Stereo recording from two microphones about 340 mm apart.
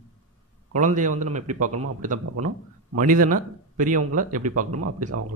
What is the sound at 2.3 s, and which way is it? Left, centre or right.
Speech, right.